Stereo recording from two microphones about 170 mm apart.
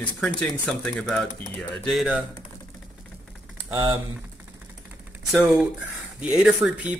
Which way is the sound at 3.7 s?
30° right (ahead or behind).